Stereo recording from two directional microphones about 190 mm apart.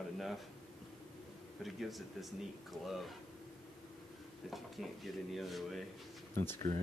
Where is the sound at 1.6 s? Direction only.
Centre (ahead or behind).